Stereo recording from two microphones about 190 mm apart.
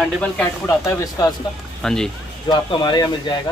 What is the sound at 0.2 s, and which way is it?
A man's voice, 10° left (ahead or behind).